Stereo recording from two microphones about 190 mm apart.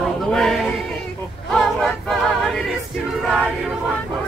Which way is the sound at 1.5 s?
Centre (ahead or behind).